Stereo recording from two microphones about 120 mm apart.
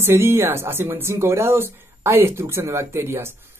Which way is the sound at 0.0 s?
20° right (ahead or behind).